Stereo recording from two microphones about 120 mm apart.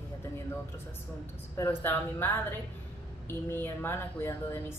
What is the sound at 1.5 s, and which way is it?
Speech, 20° left (ahead or behind).